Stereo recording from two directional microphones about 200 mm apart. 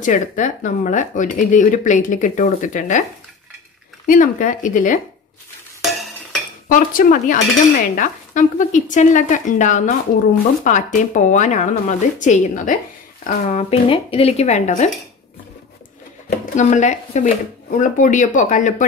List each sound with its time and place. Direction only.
0.0 s speech: 40° left (ahead or behind)
4.0 s speech: 40° left (ahead or behind)
6.7 s speech: 45° left (ahead or behind)
16.3 s speech: 40° left (ahead or behind)